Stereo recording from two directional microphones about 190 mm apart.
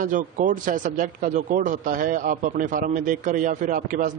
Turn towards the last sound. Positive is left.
turn(degrees=-45)  # may be behind; listen again after turning